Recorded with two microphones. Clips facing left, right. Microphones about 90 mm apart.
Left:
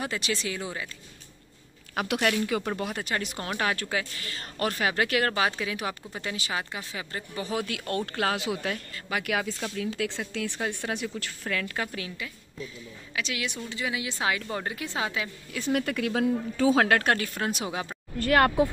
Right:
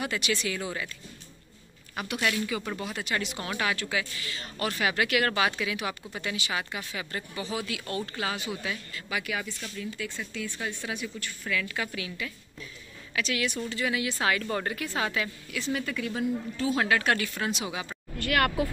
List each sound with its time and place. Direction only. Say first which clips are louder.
0.0 s speech: right 1 dB; 35° left (ahead or behind)
2.0 s speech: left 3 dB; 65° left (ahead or behind); by 7.4 s 25° left (ahead or behind)
7.4 s speech: left 6 dB; 50° left (ahead or behind)
8.9 s speech: left 2 dB; 45° left (ahead or behind)
9.3 s speech: left 5 dB; 85° left
10.6 s speech: left 3 dB; 60° left (ahead or behind)
11.4 s speech: even; 40° left (ahead or behind)
13.1 s speech: right 3 dB; 20° left (ahead or behind)
15.7 s speech: left 5 dB; 60° left (ahead or behind)
16.7 s speech: even; 55° left (ahead or behind)
17.1 s speech: left 1 dB; 40° left (ahead or behind)